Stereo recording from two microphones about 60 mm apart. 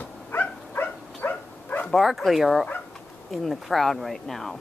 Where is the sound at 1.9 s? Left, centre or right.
Centre.